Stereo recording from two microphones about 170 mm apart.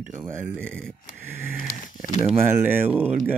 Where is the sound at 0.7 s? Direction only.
5° left (ahead or behind).